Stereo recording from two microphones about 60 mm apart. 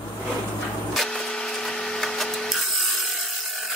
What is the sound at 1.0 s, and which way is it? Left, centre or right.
Printer, centre.